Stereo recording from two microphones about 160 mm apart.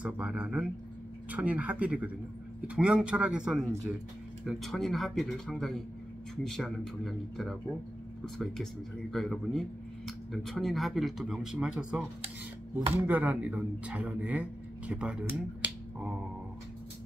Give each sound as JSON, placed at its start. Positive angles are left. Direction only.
{"t": 0.0, "sound": "speech", "side_deg": -5}
{"t": 9.1, "sound": "speech", "side_deg": 0}